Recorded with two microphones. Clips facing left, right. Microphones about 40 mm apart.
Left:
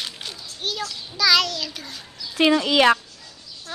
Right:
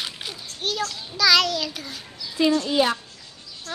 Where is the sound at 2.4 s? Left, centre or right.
Left.